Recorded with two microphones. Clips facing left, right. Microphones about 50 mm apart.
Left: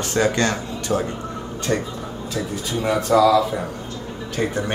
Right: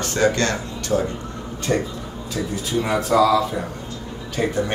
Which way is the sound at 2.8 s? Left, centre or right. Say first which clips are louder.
Left 2 dB; centre.